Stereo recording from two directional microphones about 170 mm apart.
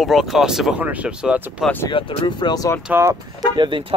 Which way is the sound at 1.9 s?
30° left (ahead or behind).